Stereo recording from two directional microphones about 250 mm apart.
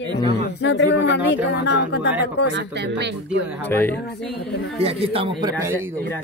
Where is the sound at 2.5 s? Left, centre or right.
Right.